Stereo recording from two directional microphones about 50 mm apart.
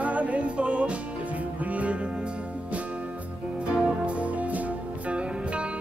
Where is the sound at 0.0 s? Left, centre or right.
Right.